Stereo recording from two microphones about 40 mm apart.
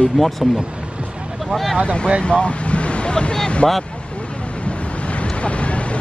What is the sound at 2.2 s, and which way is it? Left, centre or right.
Vehicle, left.